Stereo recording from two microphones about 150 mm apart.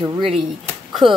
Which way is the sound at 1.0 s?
Centre (ahead or behind).